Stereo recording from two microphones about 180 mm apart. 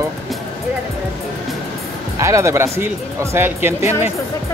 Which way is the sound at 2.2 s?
15° right (ahead or behind).